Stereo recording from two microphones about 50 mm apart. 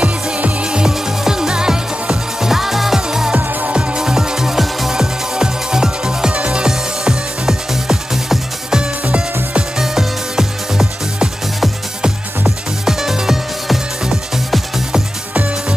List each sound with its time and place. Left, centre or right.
0.0 s music: right
3.3 s music: right
3.9 s music: centre
6.7 s music: centre
9.8 s music: centre
12.8 s music: centre